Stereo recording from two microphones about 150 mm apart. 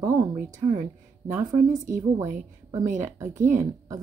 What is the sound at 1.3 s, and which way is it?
Speech, 25° right (ahead or behind).